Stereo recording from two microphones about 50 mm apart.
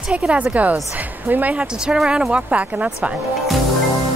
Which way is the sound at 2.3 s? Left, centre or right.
Right.